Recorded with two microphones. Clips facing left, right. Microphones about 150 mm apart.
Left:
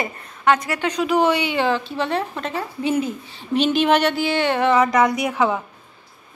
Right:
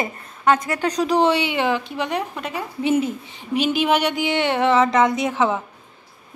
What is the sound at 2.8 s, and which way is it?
Speech, 25° right (ahead or behind).